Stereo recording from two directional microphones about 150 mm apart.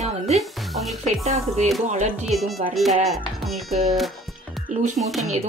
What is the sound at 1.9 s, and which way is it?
Speech, 50° right (ahead or behind).